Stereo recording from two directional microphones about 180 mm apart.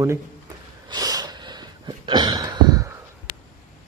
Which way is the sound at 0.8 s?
20° right (ahead or behind).